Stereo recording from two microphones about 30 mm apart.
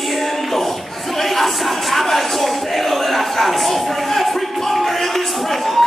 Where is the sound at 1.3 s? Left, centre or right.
Centre.